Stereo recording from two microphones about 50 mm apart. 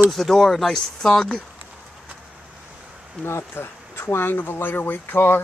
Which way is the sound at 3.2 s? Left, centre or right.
Left.